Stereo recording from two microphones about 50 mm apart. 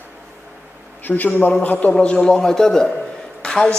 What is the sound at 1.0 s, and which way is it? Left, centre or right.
Speech, left.